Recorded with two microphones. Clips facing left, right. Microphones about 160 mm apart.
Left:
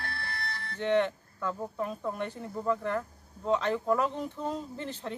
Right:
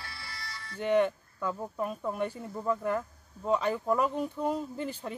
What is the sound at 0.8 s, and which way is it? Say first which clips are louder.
Speech: right 1 dB; 10° right (ahead or behind).